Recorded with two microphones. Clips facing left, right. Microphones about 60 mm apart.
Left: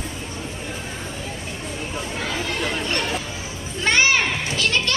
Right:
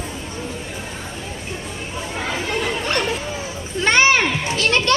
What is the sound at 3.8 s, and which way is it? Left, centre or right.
Children playing, right.